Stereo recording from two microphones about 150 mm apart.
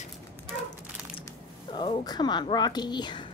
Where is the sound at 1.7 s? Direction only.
35° left (ahead or behind).